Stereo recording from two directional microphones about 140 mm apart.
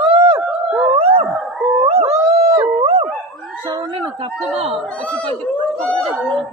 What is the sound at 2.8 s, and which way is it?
Dog, 45° right (ahead or behind).